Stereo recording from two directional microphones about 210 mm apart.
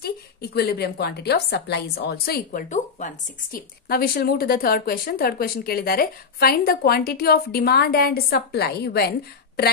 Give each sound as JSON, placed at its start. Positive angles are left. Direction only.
{"t": 0.0, "sound": "speech", "side_deg": 50}
{"t": 3.9, "sound": "speech", "side_deg": 45}